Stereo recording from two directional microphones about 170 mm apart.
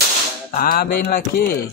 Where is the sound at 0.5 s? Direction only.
60° left (ahead or behind).